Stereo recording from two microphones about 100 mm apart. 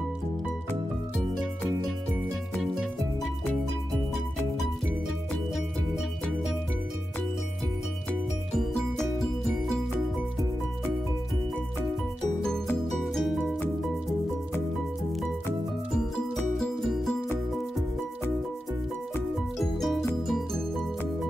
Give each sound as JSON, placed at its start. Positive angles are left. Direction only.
{"t": 2.5, "sound": "music", "side_deg": -5}
{"t": 8.5, "sound": "music", "side_deg": 5}
{"t": 13.0, "sound": "music", "side_deg": 0}
{"t": 15.9, "sound": "music", "side_deg": 5}
{"t": 19.6, "sound": "music", "side_deg": 0}